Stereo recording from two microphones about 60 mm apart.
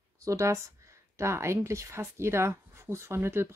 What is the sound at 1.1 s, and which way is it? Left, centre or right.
Speech, right.